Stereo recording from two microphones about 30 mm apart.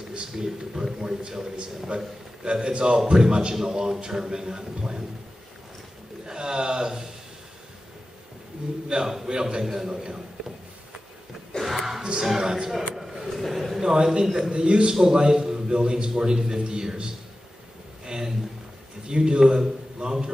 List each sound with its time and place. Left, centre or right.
0.1 s a sound: right
1.0 s a man's voice: right
6.2 s a man's voice: right
8.8 s a man's voice: centre
11.6 s a sound: centre
12.0 s a man's voice: right
12.9 s a sound: centre
13.3 s a man's voice: centre
13.7 s a man's voice: right
14.9 s a man's voice: centre
18.0 s a sound: right
19.0 s a man's voice: right